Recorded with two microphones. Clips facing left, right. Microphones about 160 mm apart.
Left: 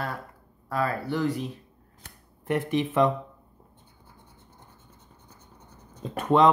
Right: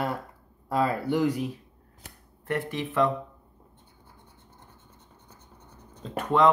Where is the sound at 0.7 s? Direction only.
20° right (ahead or behind).